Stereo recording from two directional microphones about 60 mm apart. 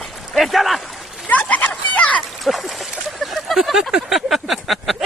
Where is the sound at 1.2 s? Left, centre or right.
Left.